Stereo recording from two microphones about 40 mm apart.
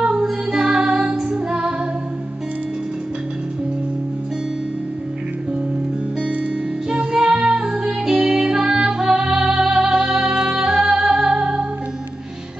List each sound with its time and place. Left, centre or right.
0.0 s music: centre
6.9 s music: right